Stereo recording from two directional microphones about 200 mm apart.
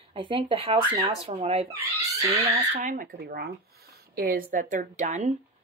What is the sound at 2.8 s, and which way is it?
Speech, 45° right (ahead or behind).